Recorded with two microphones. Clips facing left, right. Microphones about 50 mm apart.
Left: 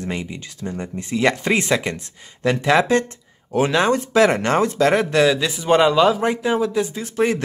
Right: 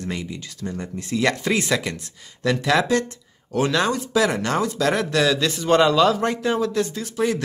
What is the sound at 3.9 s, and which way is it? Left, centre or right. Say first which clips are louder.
Speech: left 5 dB; left.